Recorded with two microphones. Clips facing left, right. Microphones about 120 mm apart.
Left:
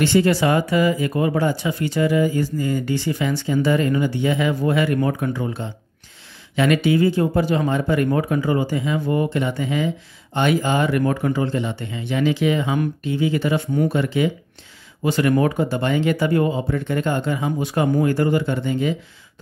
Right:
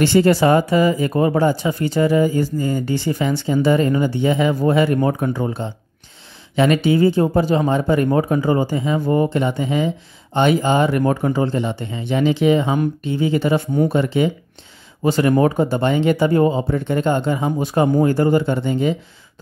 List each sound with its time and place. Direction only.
0.0 s speech: 35° right (ahead or behind)